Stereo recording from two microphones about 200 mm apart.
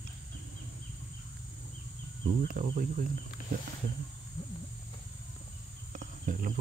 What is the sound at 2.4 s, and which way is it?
Speech, 45° right (ahead or behind).